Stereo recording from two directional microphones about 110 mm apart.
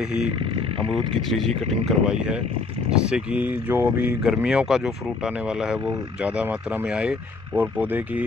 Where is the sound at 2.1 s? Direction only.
10° right (ahead or behind).